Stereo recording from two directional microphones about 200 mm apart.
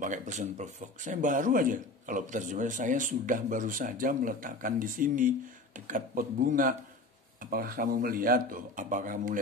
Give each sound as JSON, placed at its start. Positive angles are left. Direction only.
{"t": 0.0, "sound": "speech", "side_deg": -40}